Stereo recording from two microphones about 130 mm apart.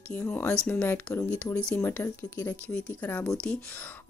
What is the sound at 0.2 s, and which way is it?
Speech, 20° left (ahead or behind).